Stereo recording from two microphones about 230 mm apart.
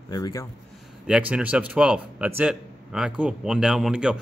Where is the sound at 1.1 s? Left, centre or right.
Centre.